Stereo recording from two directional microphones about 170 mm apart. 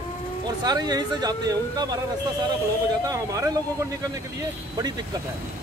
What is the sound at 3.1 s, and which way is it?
Speech, 15° right (ahead or behind).